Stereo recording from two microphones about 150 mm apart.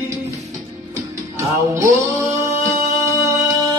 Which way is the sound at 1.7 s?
20° right (ahead or behind).